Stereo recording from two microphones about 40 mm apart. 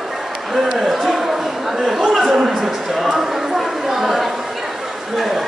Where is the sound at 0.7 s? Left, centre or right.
Centre.